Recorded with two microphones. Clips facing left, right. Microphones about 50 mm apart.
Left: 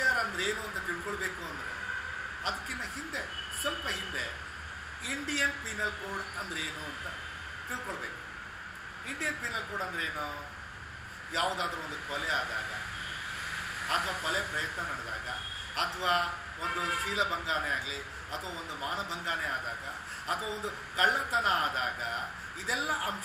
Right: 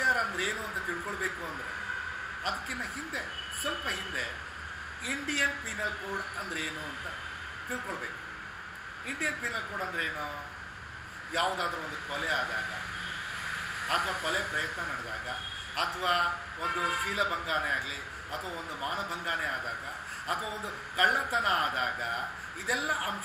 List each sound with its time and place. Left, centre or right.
0.0 s a sound: centre
2.4 s a man's voice: centre
3.9 s a man's voice: centre
7.7 s a man's voice: centre
9.2 s a man's voice: centre
11.3 s a man's voice: centre
13.8 s a man's voice: centre